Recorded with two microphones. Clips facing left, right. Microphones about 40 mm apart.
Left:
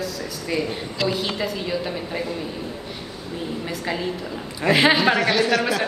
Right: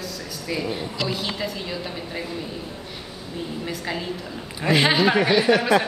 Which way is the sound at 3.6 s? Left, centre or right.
Centre.